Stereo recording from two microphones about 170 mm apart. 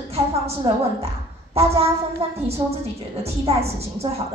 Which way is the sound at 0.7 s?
30° right (ahead or behind).